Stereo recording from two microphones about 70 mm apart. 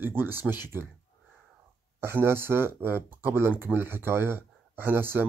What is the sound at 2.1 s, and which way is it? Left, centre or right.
Speech, right.